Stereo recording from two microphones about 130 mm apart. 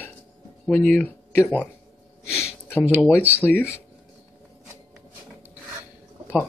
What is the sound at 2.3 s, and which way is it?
Speech, centre (ahead or behind).